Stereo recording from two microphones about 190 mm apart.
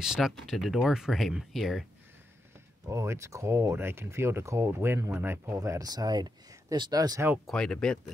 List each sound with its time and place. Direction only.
0.0 s speech: 5° right (ahead or behind)
2.9 s speech: 15° right (ahead or behind)
7.4 s speech: 5° left (ahead or behind)